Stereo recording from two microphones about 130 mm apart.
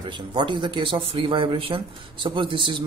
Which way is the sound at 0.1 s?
35° right (ahead or behind).